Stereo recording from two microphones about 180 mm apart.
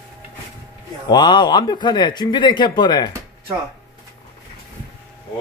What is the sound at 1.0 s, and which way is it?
A man's voice, 25° left (ahead or behind).